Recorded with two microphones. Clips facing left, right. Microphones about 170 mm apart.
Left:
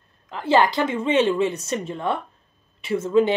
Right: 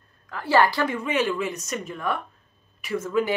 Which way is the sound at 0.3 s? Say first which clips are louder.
Left 2 dB; 20° left (ahead or behind).